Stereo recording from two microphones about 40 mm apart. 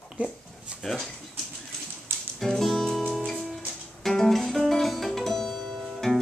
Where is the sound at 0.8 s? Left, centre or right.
Centre.